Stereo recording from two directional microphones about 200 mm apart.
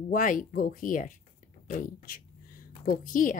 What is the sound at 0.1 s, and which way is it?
A woman's voice, 40° left (ahead or behind).